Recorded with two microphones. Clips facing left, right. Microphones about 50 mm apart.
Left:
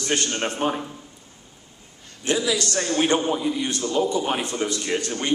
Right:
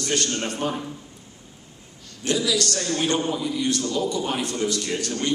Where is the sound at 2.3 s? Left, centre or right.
Left.